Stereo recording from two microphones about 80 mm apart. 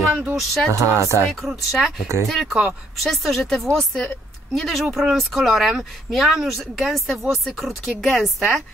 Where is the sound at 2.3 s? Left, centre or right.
Centre.